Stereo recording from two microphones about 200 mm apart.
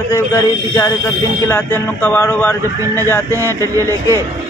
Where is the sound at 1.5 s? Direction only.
10° left (ahead or behind).